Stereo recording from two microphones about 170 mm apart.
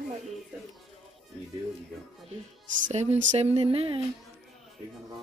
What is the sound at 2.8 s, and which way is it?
Speech, 40° right (ahead or behind).